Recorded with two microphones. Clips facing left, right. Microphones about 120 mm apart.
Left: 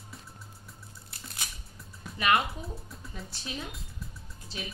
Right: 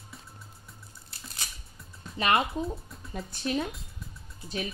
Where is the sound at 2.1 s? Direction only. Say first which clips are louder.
Even; 30° right (ahead or behind).